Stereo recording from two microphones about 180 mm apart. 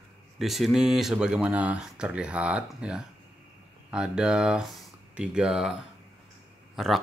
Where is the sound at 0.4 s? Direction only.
Centre (ahead or behind).